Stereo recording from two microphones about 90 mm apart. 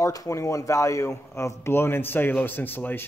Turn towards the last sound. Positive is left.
turn(degrees=20)  # may be behind; listen again after turning